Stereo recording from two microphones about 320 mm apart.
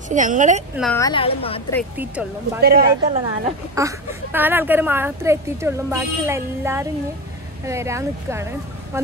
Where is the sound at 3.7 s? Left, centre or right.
Centre.